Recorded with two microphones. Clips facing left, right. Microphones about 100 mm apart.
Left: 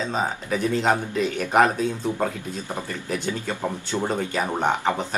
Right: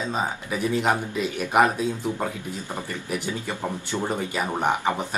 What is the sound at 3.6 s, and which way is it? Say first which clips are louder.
Speech: left 2 dB; 15° left (ahead or behind).